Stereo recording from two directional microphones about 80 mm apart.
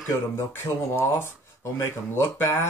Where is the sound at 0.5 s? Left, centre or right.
Left.